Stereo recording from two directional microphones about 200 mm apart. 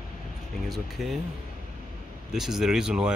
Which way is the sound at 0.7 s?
Centre (ahead or behind).